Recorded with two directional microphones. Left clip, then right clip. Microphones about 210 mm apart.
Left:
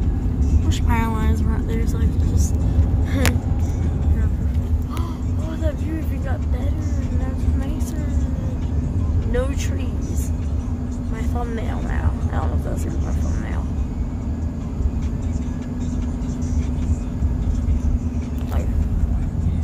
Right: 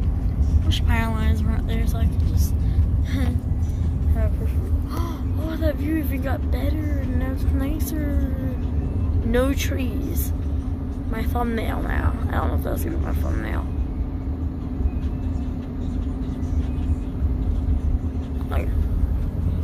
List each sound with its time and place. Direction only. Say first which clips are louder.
0.8 s speech: left 5 dB; 10° left (ahead or behind)
9.3 s speech: right 3 dB; 15° right (ahead or behind)
11.3 s speech: right 4 dB; 15° right (ahead or behind)